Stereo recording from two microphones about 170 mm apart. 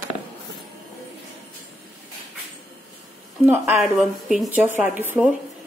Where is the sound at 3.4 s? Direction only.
10° right (ahead or behind).